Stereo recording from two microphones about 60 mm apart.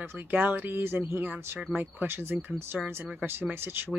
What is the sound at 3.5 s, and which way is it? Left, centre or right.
Speech, right.